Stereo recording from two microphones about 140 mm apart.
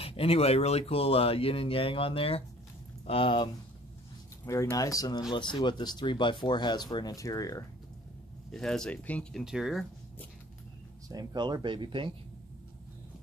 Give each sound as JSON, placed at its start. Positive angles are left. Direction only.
{"t": 0.0, "sound": "speech", "side_deg": 45}
{"t": 4.5, "sound": "speech", "side_deg": 25}
{"t": 8.5, "sound": "speech", "side_deg": 5}
{"t": 9.4, "sound": "speech", "side_deg": -5}
{"t": 11.1, "sound": "speech", "side_deg": -30}